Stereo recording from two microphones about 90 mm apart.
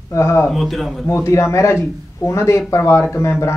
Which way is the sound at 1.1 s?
30° left (ahead or behind).